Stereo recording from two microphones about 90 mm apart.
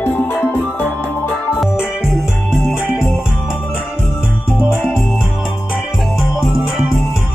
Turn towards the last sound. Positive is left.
turn(degrees=-5)  # may be behind; listen again after turning